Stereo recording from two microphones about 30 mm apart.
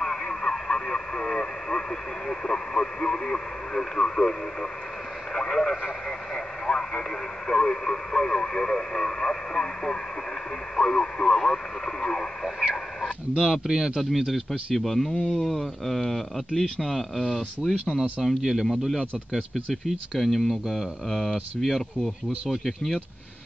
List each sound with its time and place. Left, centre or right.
0.0 s speech: centre
13.4 s speech: right
14.1 s speech: centre
14.8 s speech: centre
17.6 s speech: centre